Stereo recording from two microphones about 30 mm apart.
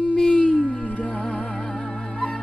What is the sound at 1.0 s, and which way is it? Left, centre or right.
Music, left.